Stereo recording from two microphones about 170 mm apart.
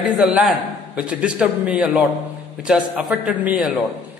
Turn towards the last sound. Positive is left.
turn(degrees=-5)  # may be behind; listen again after turning